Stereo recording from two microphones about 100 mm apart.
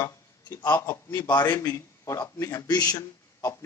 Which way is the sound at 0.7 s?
30° left (ahead or behind).